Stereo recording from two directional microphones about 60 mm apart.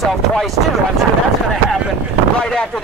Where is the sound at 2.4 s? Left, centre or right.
Centre.